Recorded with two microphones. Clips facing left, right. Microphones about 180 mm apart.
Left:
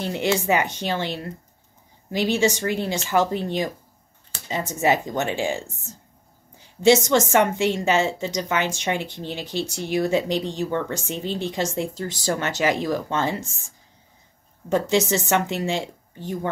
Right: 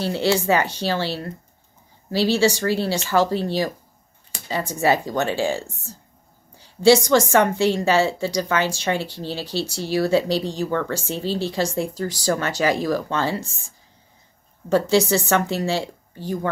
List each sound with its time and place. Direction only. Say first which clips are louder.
0.0 s speech: right 2 dB; 15° left (ahead or behind)
6.8 s speech: right 2 dB; 20° left (ahead or behind)
14.7 s speech: right 3 dB; 20° left (ahead or behind)